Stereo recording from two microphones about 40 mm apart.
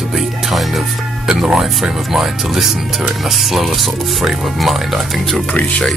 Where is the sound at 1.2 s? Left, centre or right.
Centre.